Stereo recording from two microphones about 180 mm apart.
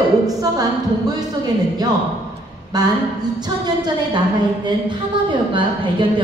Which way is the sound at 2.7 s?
20° right (ahead or behind).